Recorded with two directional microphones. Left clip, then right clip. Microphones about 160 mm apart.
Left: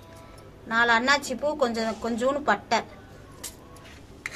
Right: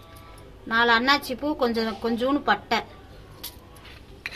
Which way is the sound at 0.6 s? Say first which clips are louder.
Right 1 dB; 50° right (ahead or behind).